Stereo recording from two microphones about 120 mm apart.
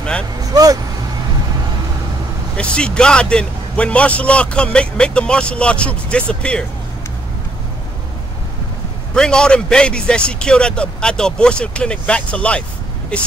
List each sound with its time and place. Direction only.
0.5 s speech: 30° right (ahead or behind)
2.5 s a man's voice: 10° left (ahead or behind)
9.1 s a man's voice: 5° left (ahead or behind)